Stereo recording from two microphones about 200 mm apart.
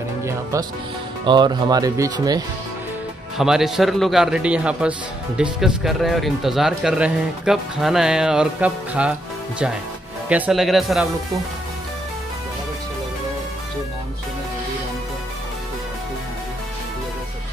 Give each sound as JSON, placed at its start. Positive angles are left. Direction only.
{"t": 0.2, "sound": "speech", "side_deg": -15}
{"t": 3.3, "sound": "speech", "side_deg": 0}
{"t": 10.3, "sound": "speech", "side_deg": -5}